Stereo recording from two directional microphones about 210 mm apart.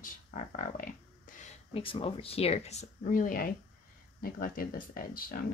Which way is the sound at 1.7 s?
25° left (ahead or behind).